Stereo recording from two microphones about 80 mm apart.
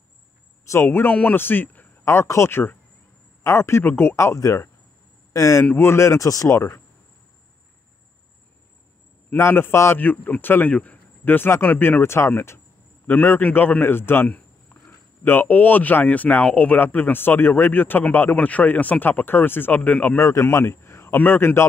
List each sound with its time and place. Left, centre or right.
0.7 s a man's voice: left
4.4 s speech: left
9.4 s a man's voice: left
20.2 s a man's voice: left